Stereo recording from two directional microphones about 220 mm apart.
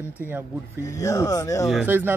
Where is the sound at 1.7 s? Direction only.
5° right (ahead or behind).